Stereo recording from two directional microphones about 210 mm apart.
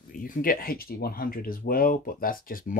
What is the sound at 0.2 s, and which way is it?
Speech, 40° left (ahead or behind).